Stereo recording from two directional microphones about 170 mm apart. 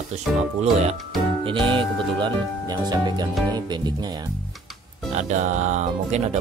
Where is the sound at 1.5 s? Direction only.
30° right (ahead or behind).